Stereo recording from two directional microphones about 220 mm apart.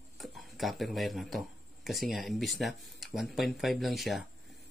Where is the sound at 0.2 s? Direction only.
Centre (ahead or behind).